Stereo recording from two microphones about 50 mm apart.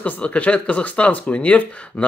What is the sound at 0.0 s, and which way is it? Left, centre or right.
Speech, left.